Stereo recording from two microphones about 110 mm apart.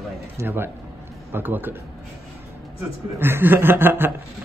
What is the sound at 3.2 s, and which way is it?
Chuckle, 20° right (ahead or behind).